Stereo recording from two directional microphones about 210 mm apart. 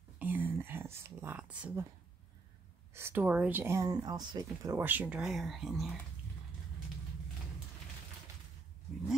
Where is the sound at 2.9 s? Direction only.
10° right (ahead or behind).